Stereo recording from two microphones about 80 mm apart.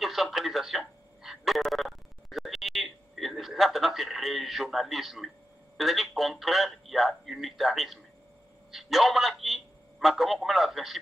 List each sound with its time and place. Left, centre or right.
0.0 s telephone: centre
5.8 s speech: centre